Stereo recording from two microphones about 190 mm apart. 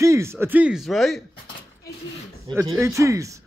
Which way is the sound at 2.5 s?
25° right (ahead or behind).